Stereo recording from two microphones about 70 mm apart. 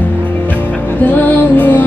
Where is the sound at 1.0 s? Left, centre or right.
Left.